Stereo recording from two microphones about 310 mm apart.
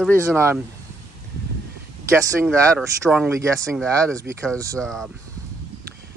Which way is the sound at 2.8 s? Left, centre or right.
Centre.